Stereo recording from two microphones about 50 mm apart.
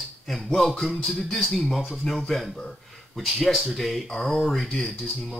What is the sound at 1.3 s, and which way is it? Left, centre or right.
Speech, centre.